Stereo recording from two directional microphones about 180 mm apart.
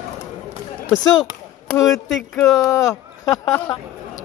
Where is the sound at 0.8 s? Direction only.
20° left (ahead or behind).